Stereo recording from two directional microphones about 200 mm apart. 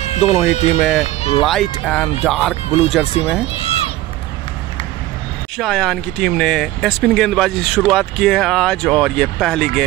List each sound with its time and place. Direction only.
0.0 s a sound: 35° left (ahead or behind)
0.5 s speech: 35° left (ahead or behind)
0.7 s speech: centre (ahead or behind)
1.0 s speech: 30° left (ahead or behind)
1.4 s speech: centre (ahead or behind)
2.5 s speech: 30° left (ahead or behind)
3.5 s run: 30° left (ahead or behind)
5.6 s speech: centre (ahead or behind)